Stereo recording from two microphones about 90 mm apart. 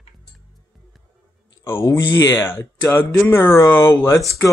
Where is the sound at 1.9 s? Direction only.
30° left (ahead or behind).